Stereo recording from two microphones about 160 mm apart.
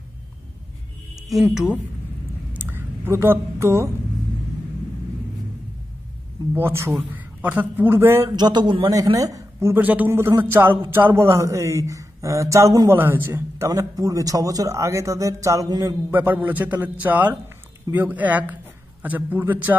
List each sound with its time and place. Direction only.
1.3 s speech: 5° right (ahead or behind)
2.5 s a sound: 10° right (ahead or behind)
6.5 s speech: 15° right (ahead or behind)
8.4 s speech: 25° right (ahead or behind); by 19.8 s 10° right (ahead or behind)